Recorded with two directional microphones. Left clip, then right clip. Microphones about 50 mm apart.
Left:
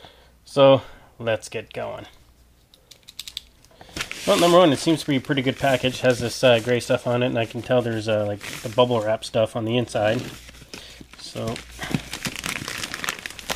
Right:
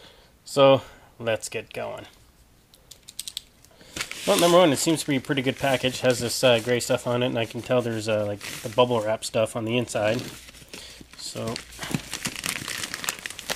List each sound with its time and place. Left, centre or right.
0.0 s speech: right
2.9 s typing: right
4.3 s speech: right
4.6 s speech: right
10.3 s a sound: centre
11.4 s crumpling: centre
12.2 s crumpling: centre